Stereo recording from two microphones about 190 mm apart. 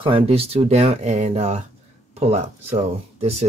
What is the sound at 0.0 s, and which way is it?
Speech, 30° right (ahead or behind).